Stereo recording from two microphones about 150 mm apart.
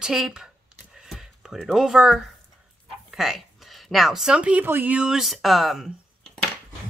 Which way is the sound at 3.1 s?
Centre (ahead or behind).